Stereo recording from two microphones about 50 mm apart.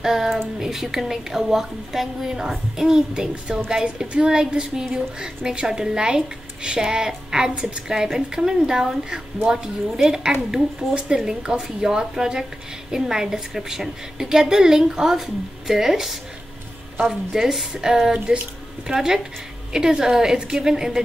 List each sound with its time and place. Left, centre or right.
0.0 s a sound: centre
0.6 s speech: centre
17.3 s speech: centre; by 18.4 s right
18.9 s speech: centre